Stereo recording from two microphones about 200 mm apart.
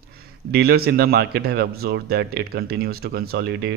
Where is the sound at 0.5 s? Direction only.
50° right (ahead or behind).